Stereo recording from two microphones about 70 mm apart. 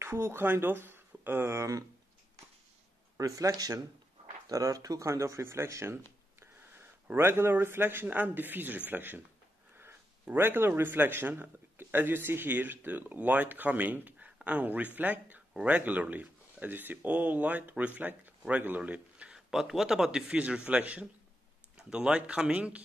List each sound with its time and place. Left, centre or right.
0.0 s speech: right
3.2 s speech: right
7.2 s a man's voice: right; by 22.8 s centre